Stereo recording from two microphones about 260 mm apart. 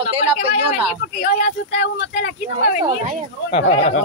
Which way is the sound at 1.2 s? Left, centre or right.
Left.